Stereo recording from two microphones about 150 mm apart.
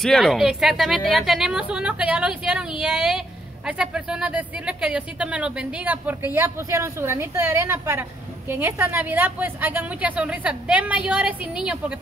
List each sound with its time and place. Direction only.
0.0 s a woman's voice: centre (ahead or behind)